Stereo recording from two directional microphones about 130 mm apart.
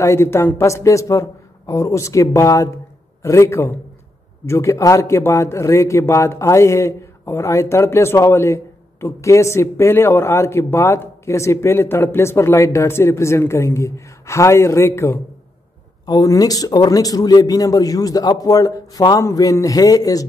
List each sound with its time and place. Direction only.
0.0 s speech: 20° left (ahead or behind)